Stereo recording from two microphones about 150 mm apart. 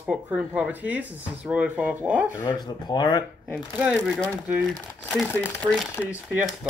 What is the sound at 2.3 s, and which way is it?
Speech, 25° left (ahead or behind).